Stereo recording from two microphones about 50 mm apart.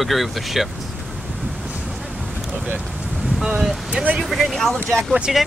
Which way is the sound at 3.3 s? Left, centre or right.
Centre.